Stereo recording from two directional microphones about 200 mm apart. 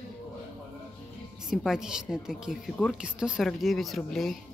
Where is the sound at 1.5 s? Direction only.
5° right (ahead or behind).